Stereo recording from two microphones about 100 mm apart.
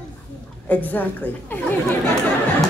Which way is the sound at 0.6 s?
20° left (ahead or behind).